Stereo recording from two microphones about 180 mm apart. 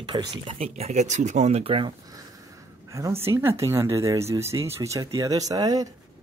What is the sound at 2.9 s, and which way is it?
Speech, 15° right (ahead or behind).